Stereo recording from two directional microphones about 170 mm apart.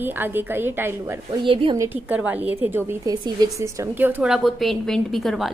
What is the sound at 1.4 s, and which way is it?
Speech, 30° right (ahead or behind).